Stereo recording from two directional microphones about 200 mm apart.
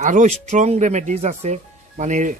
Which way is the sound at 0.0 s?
40° right (ahead or behind).